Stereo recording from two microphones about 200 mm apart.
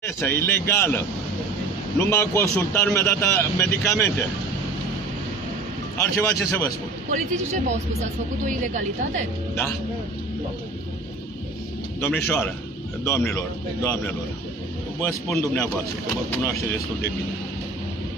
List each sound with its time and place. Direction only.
0.0 s a man's voice: 15° left (ahead or behind)
5.9 s a man's voice: 15° left (ahead or behind)
7.1 s speech: 40° right (ahead or behind)
12.3 s a man's voice: 10° left (ahead or behind)